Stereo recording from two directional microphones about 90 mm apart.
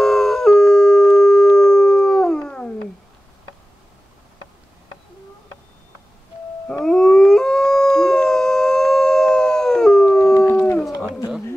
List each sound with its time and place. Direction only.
0.0 s howl: 5° left (ahead or behind)
6.7 s howl: 10° left (ahead or behind)
10.8 s a sound: centre (ahead or behind)